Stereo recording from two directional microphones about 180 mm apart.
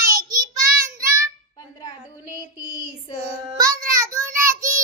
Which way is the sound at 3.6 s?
20° right (ahead or behind).